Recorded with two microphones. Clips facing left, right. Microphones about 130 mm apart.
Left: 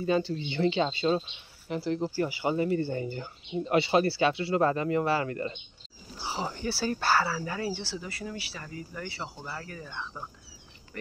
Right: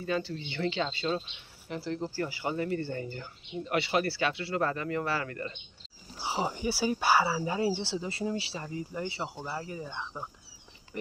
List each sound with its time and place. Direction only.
0.0 s speech: 25° left (ahead or behind)
6.1 s speech: 20° right (ahead or behind)